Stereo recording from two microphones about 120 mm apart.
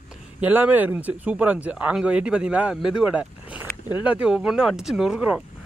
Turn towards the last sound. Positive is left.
turn(degrees=-5)  # may be behind; listen again after turning